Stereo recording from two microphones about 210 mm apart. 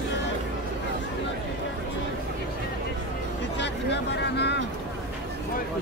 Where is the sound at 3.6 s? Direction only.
55° left (ahead or behind).